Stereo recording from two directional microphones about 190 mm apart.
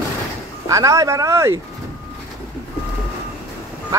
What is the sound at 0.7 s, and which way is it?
Speech, 15° right (ahead or behind).